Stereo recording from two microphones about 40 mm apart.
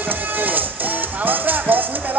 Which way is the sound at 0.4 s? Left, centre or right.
Right.